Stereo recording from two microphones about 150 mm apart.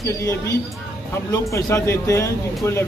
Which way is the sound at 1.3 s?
20° left (ahead or behind).